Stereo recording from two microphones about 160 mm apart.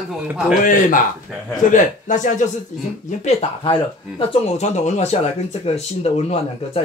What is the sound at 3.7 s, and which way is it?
Speech, 35° left (ahead or behind).